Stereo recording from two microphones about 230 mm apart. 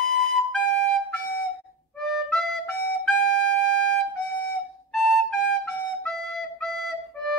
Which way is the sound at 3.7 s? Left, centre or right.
Right.